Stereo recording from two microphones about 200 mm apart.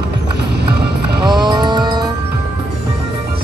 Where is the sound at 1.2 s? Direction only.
20° right (ahead or behind).